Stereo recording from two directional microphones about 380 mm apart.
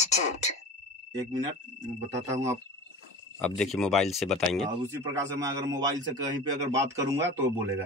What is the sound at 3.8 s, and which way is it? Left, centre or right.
A man's voice, centre.